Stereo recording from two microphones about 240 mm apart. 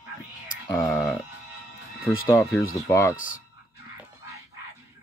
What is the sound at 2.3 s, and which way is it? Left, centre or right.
Speech, centre.